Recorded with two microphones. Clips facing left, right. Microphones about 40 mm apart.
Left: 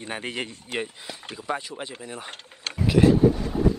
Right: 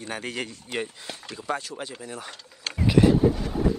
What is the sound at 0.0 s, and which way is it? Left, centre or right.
Speech, left.